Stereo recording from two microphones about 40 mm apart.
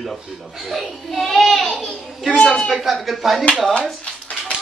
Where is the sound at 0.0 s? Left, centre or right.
Centre.